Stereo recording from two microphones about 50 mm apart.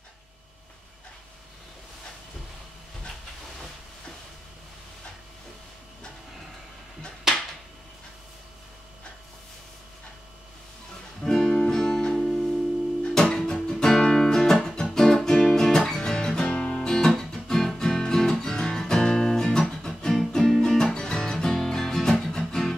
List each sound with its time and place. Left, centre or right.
11.2 s music: centre